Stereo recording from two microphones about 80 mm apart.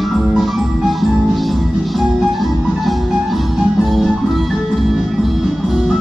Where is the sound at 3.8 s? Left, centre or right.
Centre.